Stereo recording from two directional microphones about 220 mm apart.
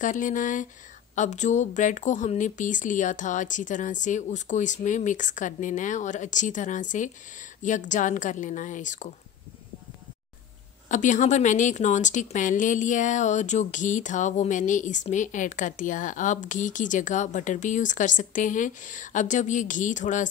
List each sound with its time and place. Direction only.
0.0 s speech: 35° left (ahead or behind)
10.9 s speech: 35° left (ahead or behind)